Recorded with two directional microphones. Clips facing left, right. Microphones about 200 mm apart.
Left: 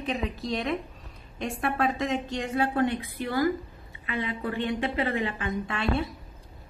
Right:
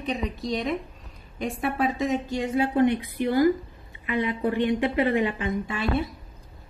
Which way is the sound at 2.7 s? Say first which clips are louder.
Right 5 dB; 20° right (ahead or behind).